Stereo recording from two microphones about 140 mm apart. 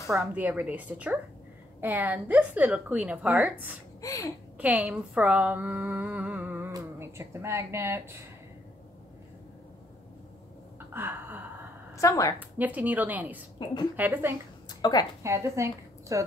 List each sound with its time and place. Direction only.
0.1 s a woman's voice: 10° right (ahead or behind)
4.0 s speech: 25° left (ahead or behind)
4.6 s a woman's voice: 10° right (ahead or behind)
10.9 s a sound: 15° right (ahead or behind)
11.9 s a woman's voice: 25° left (ahead or behind)
12.4 s a woman's voice: 10° right (ahead or behind)
14.8 s a woman's voice: 30° left (ahead or behind)
15.2 s a woman's voice: 20° right (ahead or behind)